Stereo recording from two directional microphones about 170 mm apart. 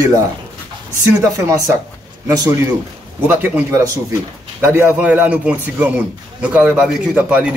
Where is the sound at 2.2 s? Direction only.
20° right (ahead or behind).